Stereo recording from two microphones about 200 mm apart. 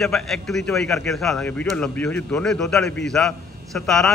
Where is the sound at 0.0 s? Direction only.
Centre (ahead or behind).